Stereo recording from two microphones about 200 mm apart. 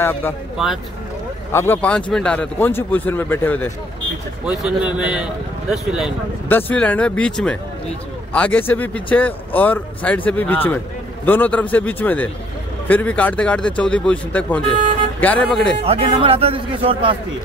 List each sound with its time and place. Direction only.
1.5 s speech: 10° left (ahead or behind)
4.5 s speech: 5° right (ahead or behind)
6.5 s speech: 10° left (ahead or behind)
15.8 s speech: 30° right (ahead or behind)